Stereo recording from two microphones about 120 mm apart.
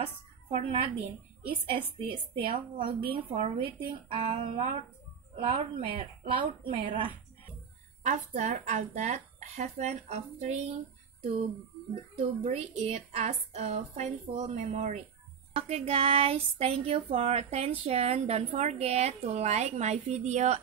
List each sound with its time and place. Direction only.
0.0 s a woman's voice: 50° right (ahead or behind)
4.3 s speech: 80° right
5.5 s speech: 60° right (ahead or behind)
8.0 s speech: 85° right
12.4 s speech: 60° right (ahead or behind)
15.5 s speech: 55° right (ahead or behind); by 20.6 s 75° right (ahead or behind)